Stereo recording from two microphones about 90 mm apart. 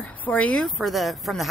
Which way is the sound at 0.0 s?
15° left (ahead or behind).